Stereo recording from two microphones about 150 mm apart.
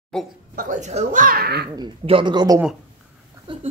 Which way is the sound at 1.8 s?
35° right (ahead or behind).